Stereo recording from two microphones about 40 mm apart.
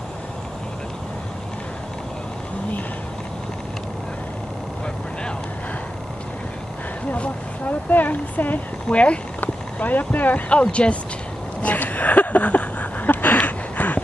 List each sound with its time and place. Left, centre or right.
7.6 s speech: left
8.9 s speech: left
9.4 s speech: left
10.5 s speech: left
11.6 s a sound: left